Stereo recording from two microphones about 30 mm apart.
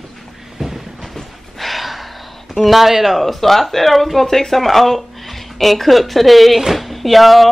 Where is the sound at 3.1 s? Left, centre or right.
Centre.